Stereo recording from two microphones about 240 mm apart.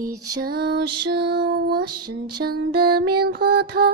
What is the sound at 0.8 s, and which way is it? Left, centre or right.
Music, right.